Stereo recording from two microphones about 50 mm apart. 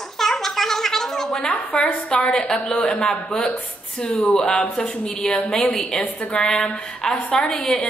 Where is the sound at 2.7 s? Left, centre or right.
Left.